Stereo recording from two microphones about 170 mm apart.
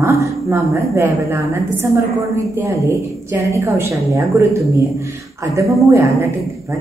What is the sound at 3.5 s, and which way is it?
Speech, 15° right (ahead or behind).